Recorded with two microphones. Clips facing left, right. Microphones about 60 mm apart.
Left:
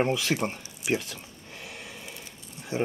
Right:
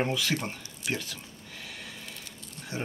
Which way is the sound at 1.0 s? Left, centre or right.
Left.